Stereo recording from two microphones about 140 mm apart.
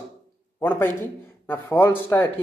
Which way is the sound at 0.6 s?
15° left (ahead or behind).